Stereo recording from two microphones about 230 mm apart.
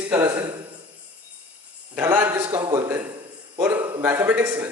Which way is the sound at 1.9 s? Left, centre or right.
Centre.